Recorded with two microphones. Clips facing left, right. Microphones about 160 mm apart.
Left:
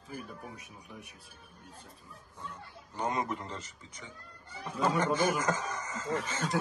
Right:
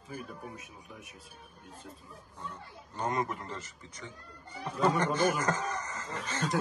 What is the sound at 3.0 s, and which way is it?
Speech, 20° left (ahead or behind).